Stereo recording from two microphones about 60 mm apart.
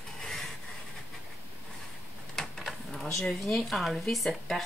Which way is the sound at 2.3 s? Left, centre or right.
Centre.